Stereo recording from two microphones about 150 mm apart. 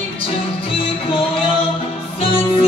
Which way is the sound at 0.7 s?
40° left (ahead or behind).